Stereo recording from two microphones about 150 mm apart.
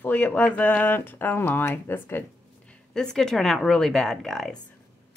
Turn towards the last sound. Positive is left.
turn(degrees=0)  # may be behind; listen again after turning